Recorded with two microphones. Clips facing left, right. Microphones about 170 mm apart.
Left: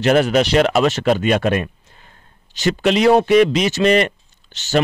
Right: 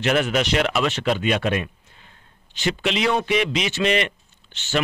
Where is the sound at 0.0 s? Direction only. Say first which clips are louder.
Left 6 dB; 40° left (ahead or behind).